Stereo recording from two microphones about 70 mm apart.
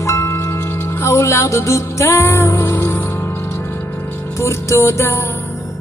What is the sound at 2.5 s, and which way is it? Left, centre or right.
Music, left.